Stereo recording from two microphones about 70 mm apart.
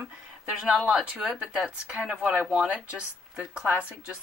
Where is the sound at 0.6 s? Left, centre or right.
Centre.